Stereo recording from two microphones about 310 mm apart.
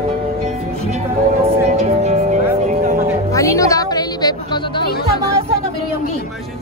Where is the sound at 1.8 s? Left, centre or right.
Right.